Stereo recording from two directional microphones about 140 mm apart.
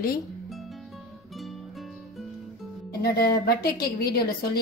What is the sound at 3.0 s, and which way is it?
A woman's voice, 90° left.